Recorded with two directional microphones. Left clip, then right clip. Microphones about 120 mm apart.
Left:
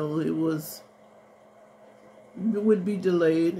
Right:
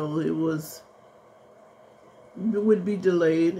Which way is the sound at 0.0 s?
5° right (ahead or behind).